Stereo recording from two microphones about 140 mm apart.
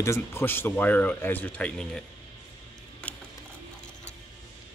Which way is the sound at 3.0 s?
10° left (ahead or behind).